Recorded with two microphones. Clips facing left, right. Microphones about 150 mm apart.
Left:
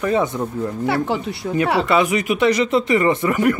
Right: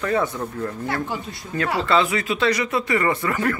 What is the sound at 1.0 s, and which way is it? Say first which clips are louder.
Speech: left 8 dB; 70° left (ahead or behind).